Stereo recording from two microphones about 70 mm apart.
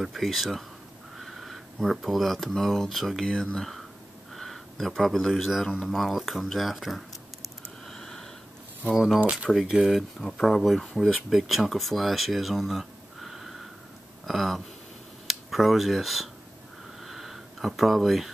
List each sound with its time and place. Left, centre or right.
0.0 s speech: centre
7.8 s a sound: centre
8.9 s speech: centre
9.2 s speech: centre
9.5 s speech: centre
17.0 s a sound: centre